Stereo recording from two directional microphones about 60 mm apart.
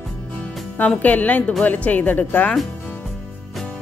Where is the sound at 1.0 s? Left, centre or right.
Left.